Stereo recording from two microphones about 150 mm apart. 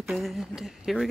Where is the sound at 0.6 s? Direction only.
Centre (ahead or behind).